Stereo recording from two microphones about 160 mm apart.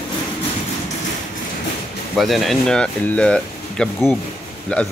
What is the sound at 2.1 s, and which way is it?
Speech, centre (ahead or behind).